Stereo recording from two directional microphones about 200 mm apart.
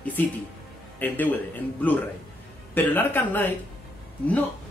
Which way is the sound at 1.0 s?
10° left (ahead or behind).